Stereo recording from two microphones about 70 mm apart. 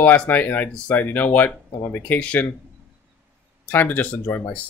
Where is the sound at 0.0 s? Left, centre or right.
Left.